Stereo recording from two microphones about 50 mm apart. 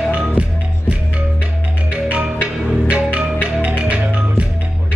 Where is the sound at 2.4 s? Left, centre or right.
Right.